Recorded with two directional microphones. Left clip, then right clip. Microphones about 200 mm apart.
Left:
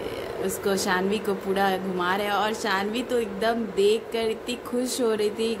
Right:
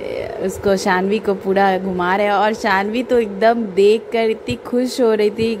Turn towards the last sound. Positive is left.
turn(degrees=-35)  # may be behind; listen again after turning